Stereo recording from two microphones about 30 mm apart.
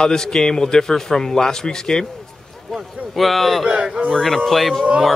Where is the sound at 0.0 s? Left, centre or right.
Centre.